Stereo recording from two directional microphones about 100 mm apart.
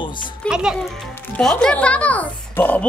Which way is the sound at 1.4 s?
5° left (ahead or behind).